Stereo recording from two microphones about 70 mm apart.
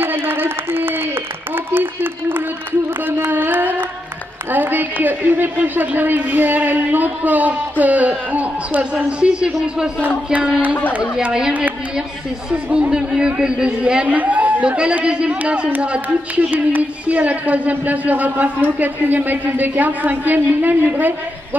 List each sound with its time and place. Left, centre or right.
0.0 s a sound: right
3.2 s carnatic music: right
4.5 s a sound: right
5.0 s a man's voice: right
9.2 s a man's voice: centre
12.6 s a man's voice: right
12.9 s a man's voice: centre; by 21.1 s right